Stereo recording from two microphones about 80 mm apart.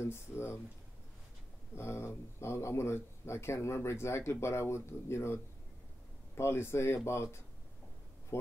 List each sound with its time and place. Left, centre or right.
0.0 s speech: left
1.8 s speech: left
8.3 s a sound: left